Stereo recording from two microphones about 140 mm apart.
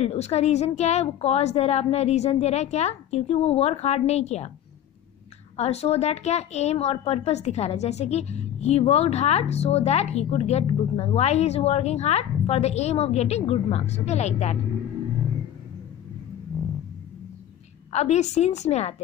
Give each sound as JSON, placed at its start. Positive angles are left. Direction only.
{"t": 0.0, "sound": "a woman's voice", "side_deg": 50}
{"t": 5.6, "sound": "a woman's voice", "side_deg": 50}
{"t": 17.9, "sound": "a woman's voice", "side_deg": 50}